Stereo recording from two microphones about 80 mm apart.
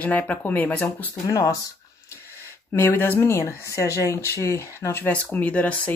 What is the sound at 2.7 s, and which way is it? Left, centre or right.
Speech, left.